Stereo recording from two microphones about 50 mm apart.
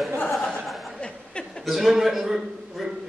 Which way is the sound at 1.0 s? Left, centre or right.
Centre.